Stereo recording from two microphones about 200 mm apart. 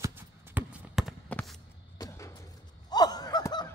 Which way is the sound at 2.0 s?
15° left (ahead or behind).